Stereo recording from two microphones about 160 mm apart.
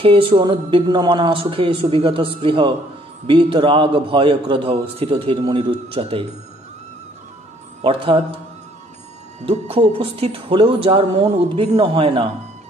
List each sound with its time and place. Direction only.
0.0 s a man's voice: 35° right (ahead or behind)
7.8 s a man's voice: 35° right (ahead or behind)
9.5 s a man's voice: 35° right (ahead or behind)